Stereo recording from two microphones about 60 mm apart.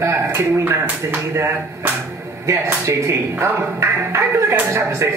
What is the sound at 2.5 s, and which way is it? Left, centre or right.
A man's voice, right.